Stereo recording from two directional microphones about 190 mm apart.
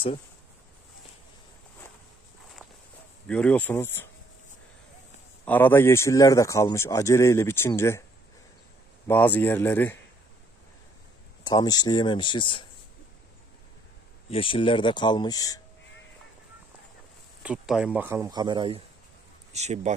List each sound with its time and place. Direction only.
3.3 s a man's voice: 5° left (ahead or behind)
5.4 s a man's voice: 10° left (ahead or behind)
9.0 s a man's voice: 10° left (ahead or behind)
11.4 s speech: 20° left (ahead or behind)
14.3 s speech: 30° left (ahead or behind)
17.4 s speech: 5° right (ahead or behind); by 18.8 s 25° right (ahead or behind)
19.5 s speech: 35° right (ahead or behind)